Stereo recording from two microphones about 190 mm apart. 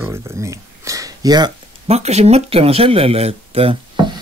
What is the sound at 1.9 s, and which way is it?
Speech, 35° right (ahead or behind).